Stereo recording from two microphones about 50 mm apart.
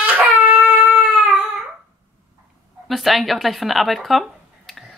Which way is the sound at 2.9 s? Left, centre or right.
Centre.